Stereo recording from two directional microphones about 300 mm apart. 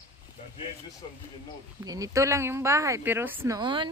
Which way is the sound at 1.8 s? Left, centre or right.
Centre.